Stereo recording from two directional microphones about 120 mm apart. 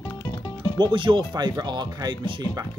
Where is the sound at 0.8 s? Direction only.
45° right (ahead or behind).